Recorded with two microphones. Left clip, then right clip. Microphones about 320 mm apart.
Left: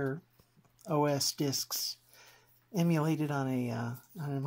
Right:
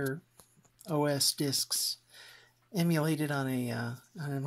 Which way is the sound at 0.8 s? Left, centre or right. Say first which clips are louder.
Even; centre.